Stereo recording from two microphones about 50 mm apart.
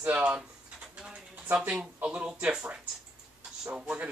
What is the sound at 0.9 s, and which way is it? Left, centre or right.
Mechanisms, right.